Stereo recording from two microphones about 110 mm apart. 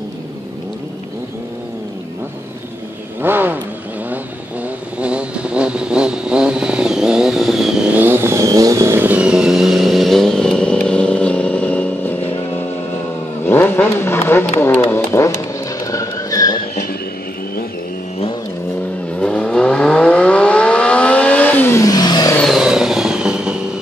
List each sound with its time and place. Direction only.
3.2 s vehicle: 20° right (ahead or behind)
4.9 s vehicle: 10° right (ahead or behind)
7.9 s vehicle: 20° right (ahead or behind); by 12.2 s 10° left (ahead or behind)
13.5 s vehicle: 20° left (ahead or behind)
15.1 s didgeridoo: 25° left (ahead or behind)
15.8 s vehicle: 30° left (ahead or behind)
19.1 s vehicle: 10° left (ahead or behind); by 22.3 s 35° left (ahead or behind)
22.6 s vehicle: 5° right (ahead or behind)